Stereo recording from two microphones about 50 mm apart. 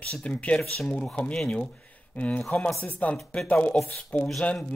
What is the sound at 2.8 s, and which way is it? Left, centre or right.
Speech, left.